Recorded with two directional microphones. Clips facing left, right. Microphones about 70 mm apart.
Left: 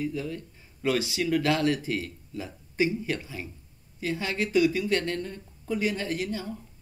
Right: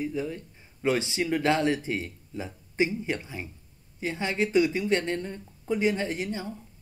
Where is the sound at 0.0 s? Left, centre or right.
Right.